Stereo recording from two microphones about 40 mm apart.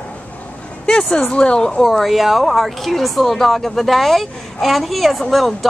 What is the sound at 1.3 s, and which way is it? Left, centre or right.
Speech, centre.